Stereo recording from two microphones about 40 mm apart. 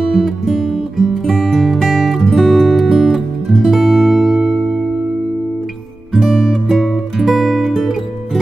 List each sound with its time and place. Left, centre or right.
0.0 s music: centre
6.3 s music: centre